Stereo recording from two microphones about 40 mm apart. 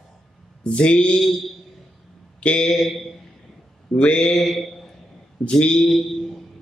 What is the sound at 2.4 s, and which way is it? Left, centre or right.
Speech, left.